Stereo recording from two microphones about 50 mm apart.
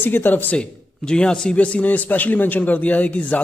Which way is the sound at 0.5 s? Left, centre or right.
Centre.